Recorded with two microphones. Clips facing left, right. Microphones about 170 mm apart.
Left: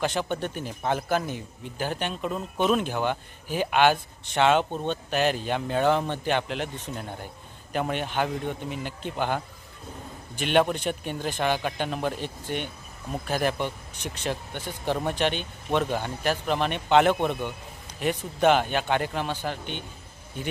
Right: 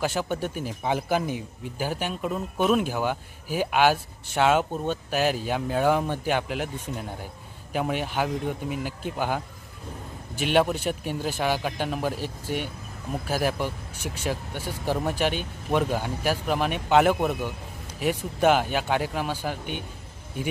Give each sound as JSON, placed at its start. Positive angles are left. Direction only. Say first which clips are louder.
{"t": 0.0, "sound": "a man's voice", "louder": "even", "side_deg": -5}